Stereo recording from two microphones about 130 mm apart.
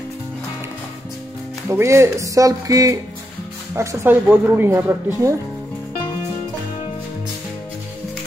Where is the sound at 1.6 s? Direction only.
20° right (ahead or behind).